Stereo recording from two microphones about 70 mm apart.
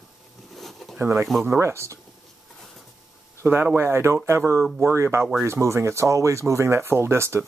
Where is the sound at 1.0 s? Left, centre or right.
Right.